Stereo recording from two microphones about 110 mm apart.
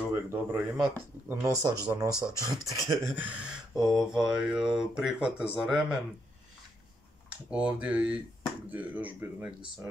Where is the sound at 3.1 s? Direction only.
15° right (ahead or behind).